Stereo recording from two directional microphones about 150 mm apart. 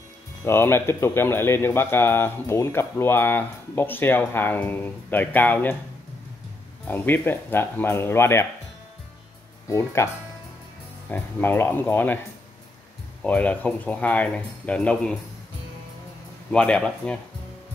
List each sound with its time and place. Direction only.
0.5 s speech: 15° left (ahead or behind)
6.9 s speech: 15° left (ahead or behind)
9.7 s speech: 20° left (ahead or behind)
11.1 s speech: 15° left (ahead or behind)
13.2 s speech: 10° left (ahead or behind)
16.5 s speech: 5° left (ahead or behind)